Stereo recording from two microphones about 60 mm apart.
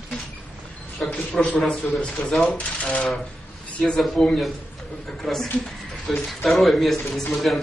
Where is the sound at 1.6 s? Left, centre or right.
Centre.